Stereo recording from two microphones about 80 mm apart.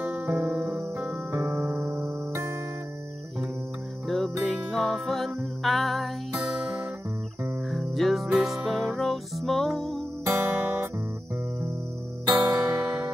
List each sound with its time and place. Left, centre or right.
0.0 s music: centre
1.3 s music: right
4.4 s music: centre
6.3 s music: centre
7.7 s music: centre
10.2 s music: right
12.3 s music: right